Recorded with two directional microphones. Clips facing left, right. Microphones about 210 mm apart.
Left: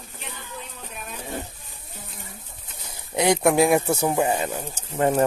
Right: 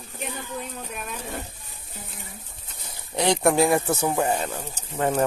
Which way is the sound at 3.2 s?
10° left (ahead or behind).